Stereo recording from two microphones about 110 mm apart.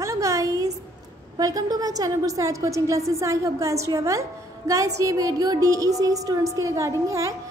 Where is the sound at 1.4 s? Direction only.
35° right (ahead or behind).